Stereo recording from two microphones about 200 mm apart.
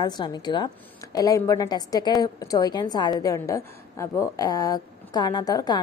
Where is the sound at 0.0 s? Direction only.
20° left (ahead or behind).